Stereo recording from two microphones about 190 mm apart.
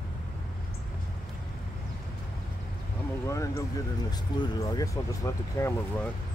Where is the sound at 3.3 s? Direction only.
15° left (ahead or behind).